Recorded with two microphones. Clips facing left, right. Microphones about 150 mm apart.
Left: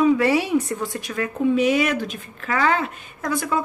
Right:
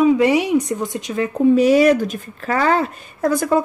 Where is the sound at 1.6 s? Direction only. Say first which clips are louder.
Right 8 dB; 40° right (ahead or behind).